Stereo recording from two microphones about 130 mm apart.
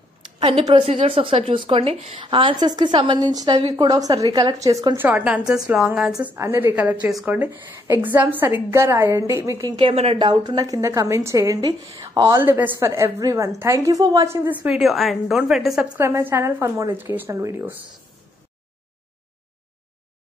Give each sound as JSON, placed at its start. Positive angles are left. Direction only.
{"t": 0.4, "sound": "a woman's voice", "side_deg": -50}
{"t": 5.0, "sound": "a woman's voice", "side_deg": -10}
{"t": 6.2, "sound": "a woman's voice", "side_deg": -20}
{"t": 14.6, "sound": "a woman's voice", "side_deg": -5}
{"t": 16.0, "sound": "a woman's voice", "side_deg": -20}